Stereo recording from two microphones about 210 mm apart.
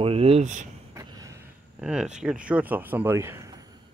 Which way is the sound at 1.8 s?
5° right (ahead or behind).